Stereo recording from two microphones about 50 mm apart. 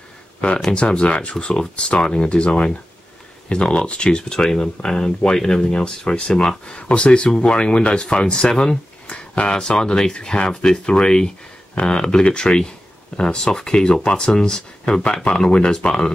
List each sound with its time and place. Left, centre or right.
0.7 s speech: left